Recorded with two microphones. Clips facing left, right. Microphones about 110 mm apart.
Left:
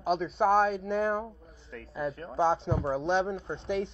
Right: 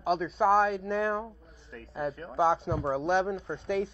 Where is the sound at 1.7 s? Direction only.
30° right (ahead or behind).